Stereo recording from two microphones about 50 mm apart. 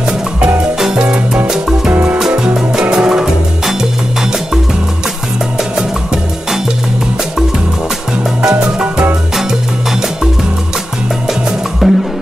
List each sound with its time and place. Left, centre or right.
0.9 s music: right
2.1 s music: centre
8.4 s music: centre
11.8 s music: centre